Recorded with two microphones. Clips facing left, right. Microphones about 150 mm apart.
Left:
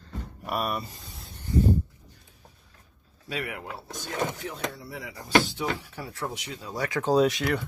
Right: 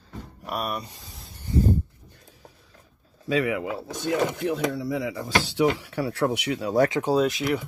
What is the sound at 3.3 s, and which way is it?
Speech, 90° right.